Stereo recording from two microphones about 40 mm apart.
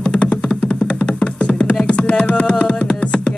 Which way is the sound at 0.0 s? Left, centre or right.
Left.